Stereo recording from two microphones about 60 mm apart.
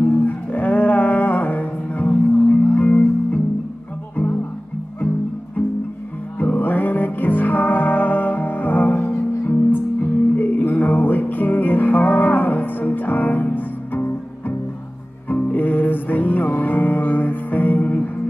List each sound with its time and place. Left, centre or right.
0.0 s music: left
6.4 s music: left
15.2 s music: left